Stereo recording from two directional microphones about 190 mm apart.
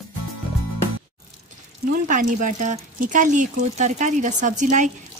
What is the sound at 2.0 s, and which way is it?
Speech, 45° right (ahead or behind).